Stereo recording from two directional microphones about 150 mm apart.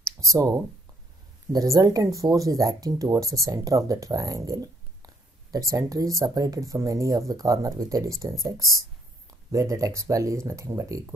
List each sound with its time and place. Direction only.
0.0 s speech: 20° right (ahead or behind)